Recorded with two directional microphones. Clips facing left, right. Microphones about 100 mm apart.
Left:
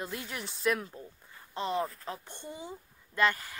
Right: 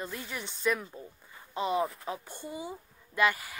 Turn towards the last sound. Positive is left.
turn(degrees=-10)  # may be behind; listen again after turning